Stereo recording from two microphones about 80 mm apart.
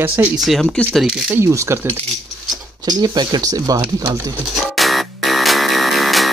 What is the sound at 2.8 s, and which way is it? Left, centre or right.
Speech, right.